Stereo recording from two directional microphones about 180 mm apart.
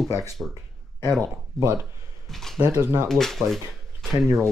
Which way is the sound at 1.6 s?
15° right (ahead or behind).